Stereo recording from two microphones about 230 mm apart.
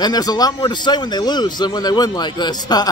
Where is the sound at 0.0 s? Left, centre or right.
Centre.